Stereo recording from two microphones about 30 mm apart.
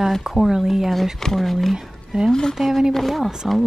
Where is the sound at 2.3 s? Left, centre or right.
Left.